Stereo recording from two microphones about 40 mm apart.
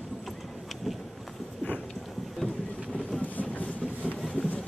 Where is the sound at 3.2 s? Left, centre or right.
Left.